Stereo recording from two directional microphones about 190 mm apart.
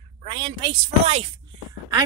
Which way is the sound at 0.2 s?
30° right (ahead or behind).